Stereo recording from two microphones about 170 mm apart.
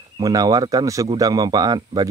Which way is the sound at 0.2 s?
20° right (ahead or behind).